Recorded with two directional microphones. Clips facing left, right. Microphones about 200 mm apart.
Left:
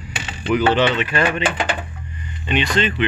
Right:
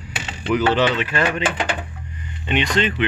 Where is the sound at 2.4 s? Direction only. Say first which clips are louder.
Even; 20° right (ahead or behind).